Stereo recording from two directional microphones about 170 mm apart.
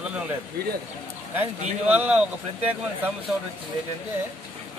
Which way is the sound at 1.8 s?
10° right (ahead or behind).